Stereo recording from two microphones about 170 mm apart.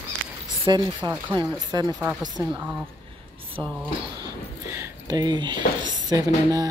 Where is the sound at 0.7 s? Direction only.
25° right (ahead or behind).